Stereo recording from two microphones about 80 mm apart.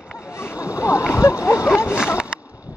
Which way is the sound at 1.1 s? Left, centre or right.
Left.